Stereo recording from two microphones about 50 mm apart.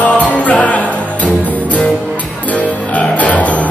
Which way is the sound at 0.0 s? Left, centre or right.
Left.